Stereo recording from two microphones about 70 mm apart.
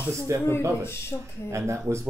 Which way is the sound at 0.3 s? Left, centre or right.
Right.